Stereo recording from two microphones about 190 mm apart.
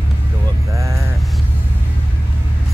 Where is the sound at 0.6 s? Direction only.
15° right (ahead or behind).